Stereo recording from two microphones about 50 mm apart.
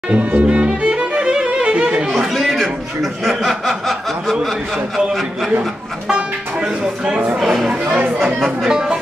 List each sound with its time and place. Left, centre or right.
0.1 s music: right
2.3 s chuckle: centre
4.9 s a man's voice: centre
7.3 s a man's voice: centre